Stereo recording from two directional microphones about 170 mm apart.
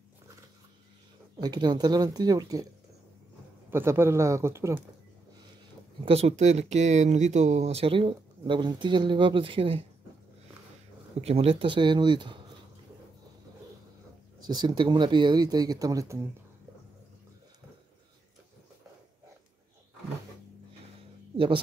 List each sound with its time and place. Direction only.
1.4 s speech: 25° right (ahead or behind)
3.7 s speech: 15° right (ahead or behind)
6.0 s speech: 35° right (ahead or behind)
11.1 s speech: 35° right (ahead or behind)
14.4 s speech: 25° right (ahead or behind)